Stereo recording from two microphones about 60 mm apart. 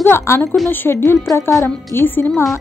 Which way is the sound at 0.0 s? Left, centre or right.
Left.